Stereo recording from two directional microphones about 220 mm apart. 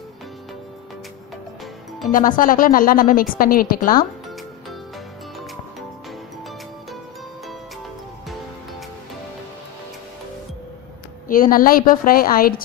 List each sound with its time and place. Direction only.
2.1 s a woman's voice: 40° left (ahead or behind)
11.2 s a woman's voice: 40° left (ahead or behind)